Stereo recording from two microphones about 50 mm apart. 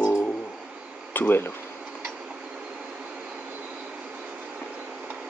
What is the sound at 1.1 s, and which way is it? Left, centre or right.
Speech, left.